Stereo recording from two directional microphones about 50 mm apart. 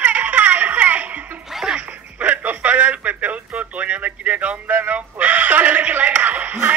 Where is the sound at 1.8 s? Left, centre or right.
Right.